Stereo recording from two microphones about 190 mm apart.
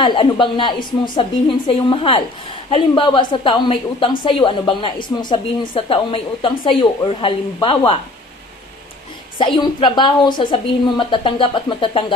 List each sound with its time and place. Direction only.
0.0 s a woman's voice: 25° left (ahead or behind)
9.4 s a woman's voice: 25° left (ahead or behind)